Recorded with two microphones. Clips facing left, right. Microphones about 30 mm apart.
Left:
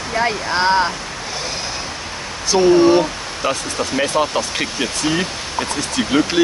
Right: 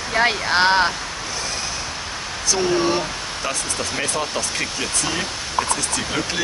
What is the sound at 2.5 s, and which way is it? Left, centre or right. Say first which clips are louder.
Speech: left 9 dB; left.